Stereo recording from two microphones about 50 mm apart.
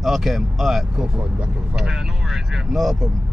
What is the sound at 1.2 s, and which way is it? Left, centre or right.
Speech, right.